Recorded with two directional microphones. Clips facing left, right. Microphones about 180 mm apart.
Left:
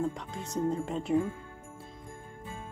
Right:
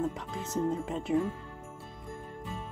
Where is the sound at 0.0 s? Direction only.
Centre (ahead or behind).